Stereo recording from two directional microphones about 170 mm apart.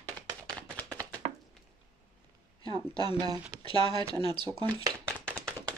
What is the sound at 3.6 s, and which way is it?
Speech, 30° left (ahead or behind).